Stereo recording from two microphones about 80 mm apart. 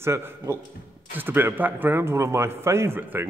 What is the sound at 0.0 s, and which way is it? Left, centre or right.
Speech, right.